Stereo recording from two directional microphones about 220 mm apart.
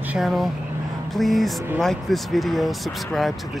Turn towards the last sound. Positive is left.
turn(degrees=0)  # may be behind; listen again after turning